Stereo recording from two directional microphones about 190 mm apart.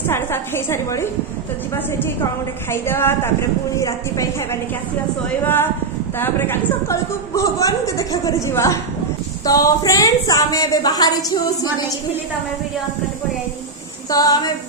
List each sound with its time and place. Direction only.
0.1 s a man's voice: 15° left (ahead or behind)
2.7 s a man's voice: 10° left (ahead or behind)
5.4 s a man's voice: 10° left (ahead or behind)
14.1 s a woman's voice: 20° left (ahead or behind)